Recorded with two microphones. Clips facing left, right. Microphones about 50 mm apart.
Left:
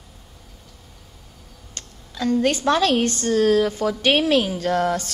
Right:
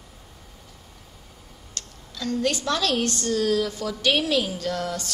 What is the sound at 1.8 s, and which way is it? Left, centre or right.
A woman's voice, left.